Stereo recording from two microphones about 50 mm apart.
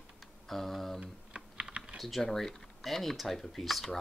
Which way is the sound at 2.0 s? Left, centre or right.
Centre.